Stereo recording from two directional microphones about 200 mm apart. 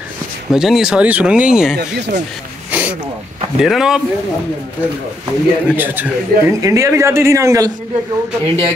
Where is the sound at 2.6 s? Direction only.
10° right (ahead or behind).